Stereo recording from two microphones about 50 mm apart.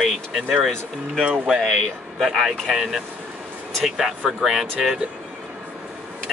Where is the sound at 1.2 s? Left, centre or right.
Centre.